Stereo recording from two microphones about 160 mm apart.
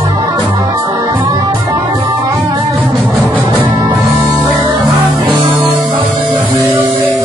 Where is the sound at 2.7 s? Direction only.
Centre (ahead or behind).